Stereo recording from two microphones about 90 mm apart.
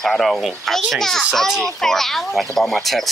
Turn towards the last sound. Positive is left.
turn(degrees=0)  # may be behind; listen again after turning